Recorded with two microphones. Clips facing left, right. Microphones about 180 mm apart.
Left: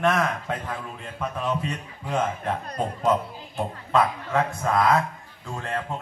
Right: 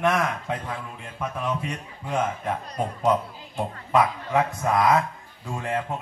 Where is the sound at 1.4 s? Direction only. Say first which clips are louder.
Left 2 dB; 10° right (ahead or behind).